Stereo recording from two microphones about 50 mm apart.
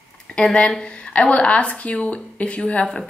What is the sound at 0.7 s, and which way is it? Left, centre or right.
A woman's voice, centre.